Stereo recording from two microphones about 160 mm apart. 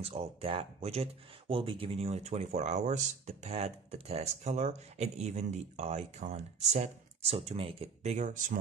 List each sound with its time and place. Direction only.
0.0 s speech: 40° right (ahead or behind)